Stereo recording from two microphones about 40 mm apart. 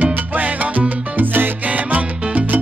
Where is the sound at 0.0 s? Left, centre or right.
Right.